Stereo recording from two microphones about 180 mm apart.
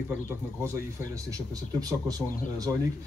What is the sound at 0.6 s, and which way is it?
Speech, 20° right (ahead or behind).